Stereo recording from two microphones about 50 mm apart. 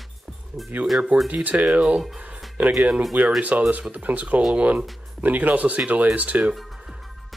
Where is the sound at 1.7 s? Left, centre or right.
Centre.